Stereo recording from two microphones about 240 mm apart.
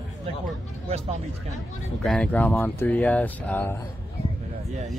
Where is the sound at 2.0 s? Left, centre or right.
Centre.